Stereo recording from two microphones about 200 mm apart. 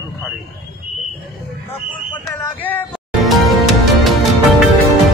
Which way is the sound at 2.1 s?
10° left (ahead or behind).